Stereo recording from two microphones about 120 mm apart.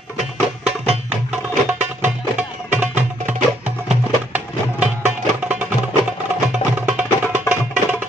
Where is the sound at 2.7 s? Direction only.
15° right (ahead or behind).